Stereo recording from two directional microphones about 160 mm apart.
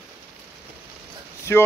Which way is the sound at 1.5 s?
15° left (ahead or behind).